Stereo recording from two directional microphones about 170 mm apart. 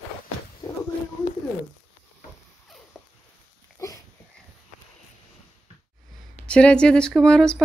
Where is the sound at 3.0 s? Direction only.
Centre (ahead or behind).